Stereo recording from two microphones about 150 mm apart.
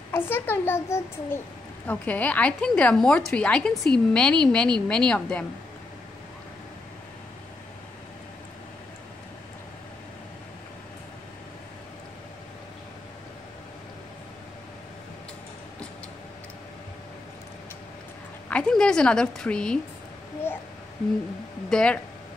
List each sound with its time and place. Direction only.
0.1 s a woman's voice: 15° left (ahead or behind)
18.5 s a woman's voice: 5° left (ahead or behind)
21.6 s a woman's voice: 5° left (ahead or behind)